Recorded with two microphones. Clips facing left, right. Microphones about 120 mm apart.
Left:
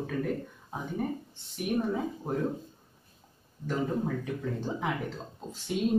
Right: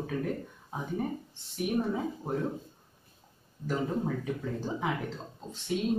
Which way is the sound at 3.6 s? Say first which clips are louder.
Left 1 dB; 5° right (ahead or behind).